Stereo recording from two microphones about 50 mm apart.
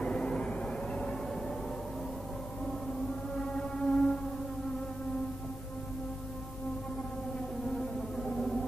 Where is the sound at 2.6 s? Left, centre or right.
Centre.